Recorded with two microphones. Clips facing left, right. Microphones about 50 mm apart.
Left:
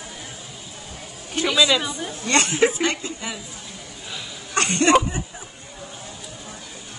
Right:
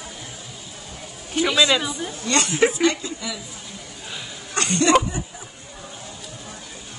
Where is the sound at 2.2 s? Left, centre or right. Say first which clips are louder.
Left 1 dB; left.